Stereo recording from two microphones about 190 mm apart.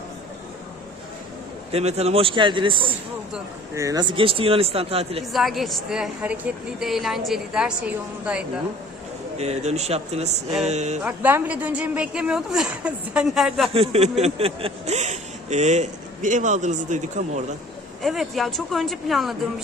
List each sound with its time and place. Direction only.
1.7 s speech: 35° right (ahead or behind)
5.2 s a woman's voice: centre (ahead or behind)
9.4 s speech: 35° right (ahead or behind)
11.0 s a woman's voice: 10° right (ahead or behind)
13.7 s speech: 30° right (ahead or behind)
18.0 s a woman's voice: centre (ahead or behind)